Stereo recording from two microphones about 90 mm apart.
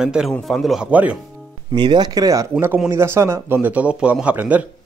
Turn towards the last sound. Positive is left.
turn(degrees=-15)  # may be behind; listen again after turning